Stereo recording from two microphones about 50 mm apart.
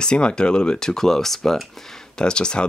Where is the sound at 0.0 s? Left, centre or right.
Centre.